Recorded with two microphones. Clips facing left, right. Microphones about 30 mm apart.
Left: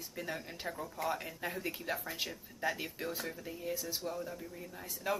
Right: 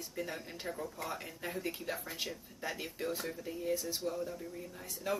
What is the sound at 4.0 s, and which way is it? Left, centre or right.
Speech, centre.